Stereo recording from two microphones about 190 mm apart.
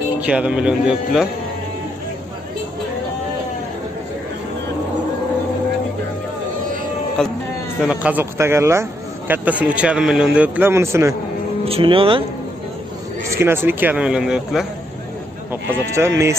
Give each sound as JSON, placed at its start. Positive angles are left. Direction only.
{"t": 0.2, "sound": "speech", "side_deg": -5}
{"t": 7.8, "sound": "a man's voice", "side_deg": -5}
{"t": 11.6, "sound": "speech", "side_deg": -30}
{"t": 13.3, "sound": "a man's voice", "side_deg": -15}
{"t": 15.9, "sound": "a man's voice", "side_deg": -15}